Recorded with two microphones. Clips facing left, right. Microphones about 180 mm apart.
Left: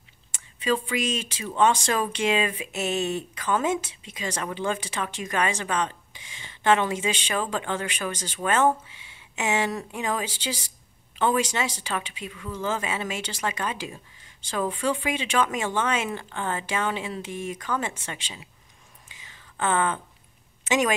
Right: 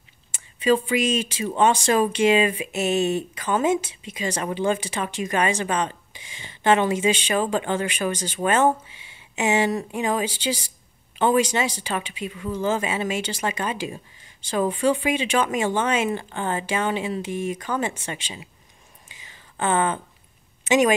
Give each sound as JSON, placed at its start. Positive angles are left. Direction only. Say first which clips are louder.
{"t": 0.3, "sound": "speech", "louder": "right 6 dB", "side_deg": -10}
{"t": 8.4, "sound": "speech", "louder": "right 4 dB", "side_deg": -25}
{"t": 9.3, "sound": "speech", "louder": "right 5 dB", "side_deg": -5}
{"t": 12.3, "sound": "speech", "louder": "right 6 dB", "side_deg": -20}
{"t": 12.8, "sound": "speech", "louder": "right 5 dB", "side_deg": -10}
{"t": 19.6, "sound": "speech", "louder": "right 3 dB", "side_deg": -10}